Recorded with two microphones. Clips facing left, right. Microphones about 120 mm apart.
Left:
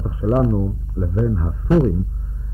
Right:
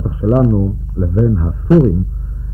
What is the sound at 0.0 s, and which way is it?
Speech, 25° right (ahead or behind).